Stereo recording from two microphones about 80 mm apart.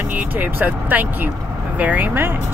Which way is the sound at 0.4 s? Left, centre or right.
Right.